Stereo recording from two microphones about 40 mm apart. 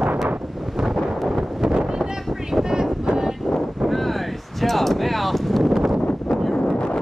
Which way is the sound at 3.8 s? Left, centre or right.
Centre.